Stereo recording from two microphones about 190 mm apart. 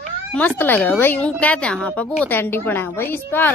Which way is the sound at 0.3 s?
10° left (ahead or behind).